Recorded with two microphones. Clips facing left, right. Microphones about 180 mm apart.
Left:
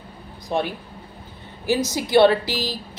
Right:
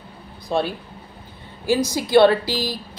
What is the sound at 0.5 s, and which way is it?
A woman's voice, 15° left (ahead or behind).